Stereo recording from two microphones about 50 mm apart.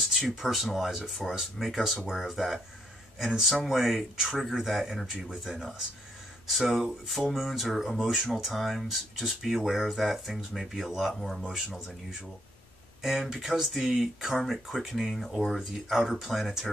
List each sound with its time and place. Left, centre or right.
0.2 s speech: centre
6.6 s speech: centre